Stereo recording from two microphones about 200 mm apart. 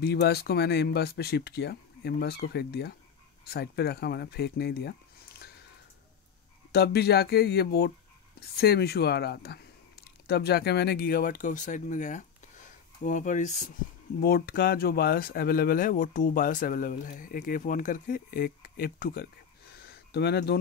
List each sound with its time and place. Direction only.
0.0 s speech: 55° left (ahead or behind)
6.7 s speech: 55° left (ahead or behind); by 13.7 s 35° left (ahead or behind)
14.2 s speech: 50° left (ahead or behind)
19.8 s a sound: 55° left (ahead or behind)